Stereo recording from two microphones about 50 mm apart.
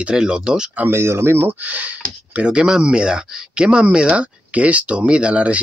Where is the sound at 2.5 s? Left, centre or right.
Centre.